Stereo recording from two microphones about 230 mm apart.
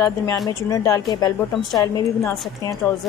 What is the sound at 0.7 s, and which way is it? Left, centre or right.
Speech, centre.